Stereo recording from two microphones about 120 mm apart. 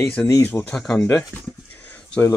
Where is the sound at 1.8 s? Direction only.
10° left (ahead or behind).